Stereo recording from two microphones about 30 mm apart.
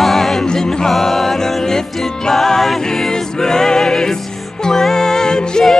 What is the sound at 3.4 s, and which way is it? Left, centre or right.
Music, centre.